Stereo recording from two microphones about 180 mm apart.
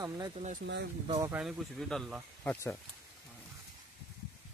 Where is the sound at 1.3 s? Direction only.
Centre (ahead or behind).